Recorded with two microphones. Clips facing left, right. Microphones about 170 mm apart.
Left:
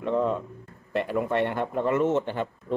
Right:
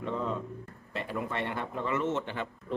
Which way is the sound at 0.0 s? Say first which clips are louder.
Left 8 dB; 60° left (ahead or behind).